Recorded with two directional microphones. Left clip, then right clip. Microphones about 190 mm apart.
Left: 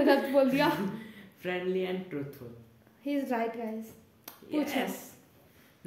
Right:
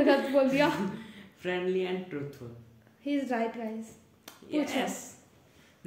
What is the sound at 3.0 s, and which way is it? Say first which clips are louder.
A woman's voice: right 1 dB; 20° left (ahead or behind).